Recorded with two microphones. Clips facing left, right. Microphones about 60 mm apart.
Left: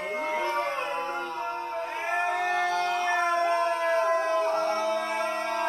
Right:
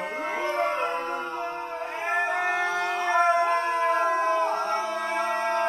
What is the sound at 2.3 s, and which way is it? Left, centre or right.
Howl, right.